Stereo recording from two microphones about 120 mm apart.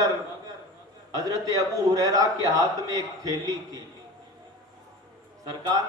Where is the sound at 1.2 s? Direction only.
30° right (ahead or behind).